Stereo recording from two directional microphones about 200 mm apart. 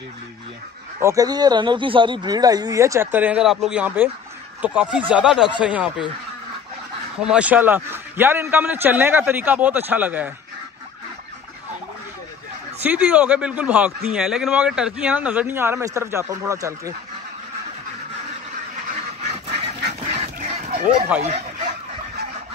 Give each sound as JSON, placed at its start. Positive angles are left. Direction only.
{"t": 1.0, "sound": "a man's voice", "side_deg": -20}
{"t": 7.2, "sound": "a man's voice", "side_deg": -5}
{"t": 12.8, "sound": "a man's voice", "side_deg": -5}
{"t": 20.1, "sound": "duck", "side_deg": -35}
{"t": 21.3, "sound": "speech", "side_deg": -35}